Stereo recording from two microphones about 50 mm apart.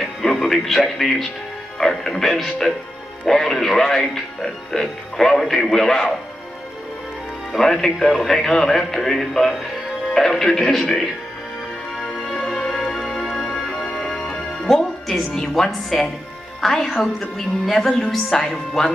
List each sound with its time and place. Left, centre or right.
0.0 s a woman's voice: centre
7.5 s a woman's voice: centre
12.0 s music: left
12.7 s music: centre
14.7 s a woman's voice: centre